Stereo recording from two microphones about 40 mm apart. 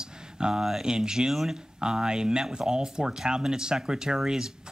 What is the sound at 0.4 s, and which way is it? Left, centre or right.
Speech, centre.